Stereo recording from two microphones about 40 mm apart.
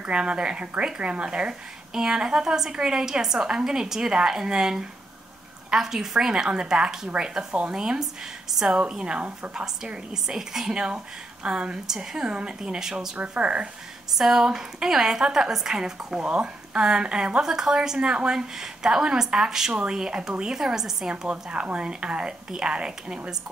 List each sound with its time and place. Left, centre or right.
0.0 s a woman's voice: right
8.5 s a woman's voice: centre
8.8 s speech: right
10.2 s a woman's voice: centre
13.2 s speech: right
14.1 s a woman's voice: centre
21.3 s speech: right